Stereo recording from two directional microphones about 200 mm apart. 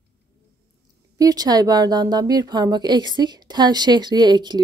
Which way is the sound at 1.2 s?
20° right (ahead or behind).